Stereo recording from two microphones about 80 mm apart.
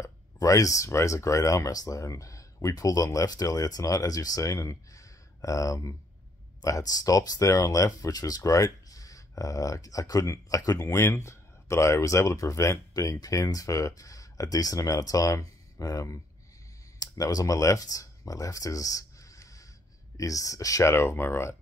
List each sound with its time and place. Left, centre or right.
0.0 s speech: left
10.9 s speech: left